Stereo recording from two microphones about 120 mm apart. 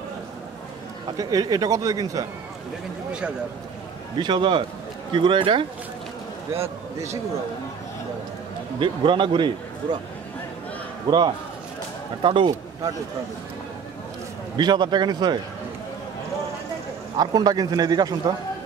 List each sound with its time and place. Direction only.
1.1 s a man's voice: 30° right (ahead or behind)
3.1 s speech: 10° right (ahead or behind)
4.2 s speech: 40° right (ahead or behind)
6.6 s a man's voice: 25° right (ahead or behind)
8.7 s speech: 45° right (ahead or behind)
11.1 s a man's voice: 40° right (ahead or behind)
14.6 s a man's voice: 40° right (ahead or behind)
17.2 s a man's voice: 35° right (ahead or behind)